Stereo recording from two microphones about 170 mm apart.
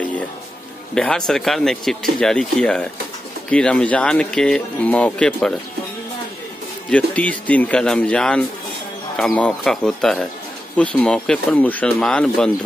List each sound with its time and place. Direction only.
0.9 s speech: 5° left (ahead or behind)
6.9 s a man's voice: 5° left (ahead or behind)